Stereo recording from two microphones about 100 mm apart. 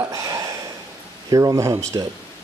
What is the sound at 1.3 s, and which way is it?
Speech, 30° right (ahead or behind).